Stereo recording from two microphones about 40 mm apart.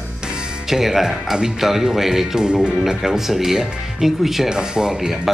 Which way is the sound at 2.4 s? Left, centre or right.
Right.